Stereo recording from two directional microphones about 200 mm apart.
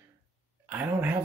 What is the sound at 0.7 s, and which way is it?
Speech, 10° right (ahead or behind).